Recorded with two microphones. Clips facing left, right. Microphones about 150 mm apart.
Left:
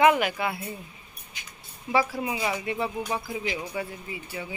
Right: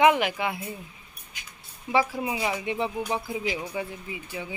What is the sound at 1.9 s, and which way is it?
Speech, 15° right (ahead or behind).